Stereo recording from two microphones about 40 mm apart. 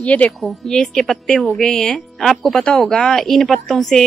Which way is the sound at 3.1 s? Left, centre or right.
Centre.